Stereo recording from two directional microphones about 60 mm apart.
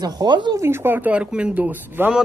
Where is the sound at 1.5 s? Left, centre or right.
Right.